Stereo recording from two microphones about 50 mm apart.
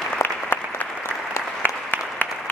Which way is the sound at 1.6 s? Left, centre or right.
Left.